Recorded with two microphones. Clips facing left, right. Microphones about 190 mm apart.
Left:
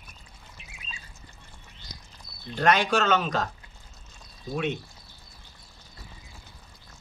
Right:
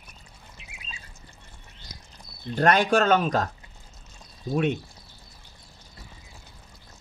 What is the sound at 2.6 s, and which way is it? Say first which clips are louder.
Speech: right 3 dB; 50° right (ahead or behind).